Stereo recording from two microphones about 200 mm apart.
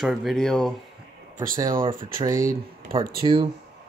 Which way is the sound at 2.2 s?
15° right (ahead or behind).